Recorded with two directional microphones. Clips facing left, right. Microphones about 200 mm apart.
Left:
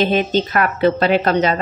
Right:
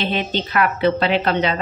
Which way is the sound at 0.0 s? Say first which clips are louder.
Left 6 dB; 45° left (ahead or behind).